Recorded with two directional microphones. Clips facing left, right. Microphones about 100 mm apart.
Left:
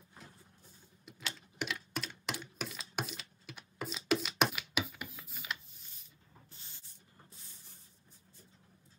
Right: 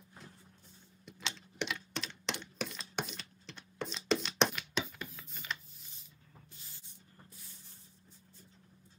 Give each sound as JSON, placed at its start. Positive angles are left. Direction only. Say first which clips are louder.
{"t": 1.0, "sound": "typing", "louder": "right 1 dB", "side_deg": 5}